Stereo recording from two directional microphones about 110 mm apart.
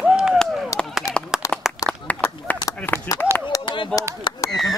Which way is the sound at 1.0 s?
30° left (ahead or behind).